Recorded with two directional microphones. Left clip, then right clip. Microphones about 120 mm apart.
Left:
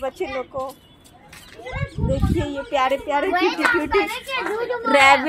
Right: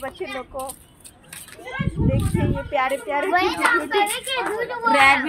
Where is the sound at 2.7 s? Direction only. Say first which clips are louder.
Left 3 dB; 70° left (ahead or behind).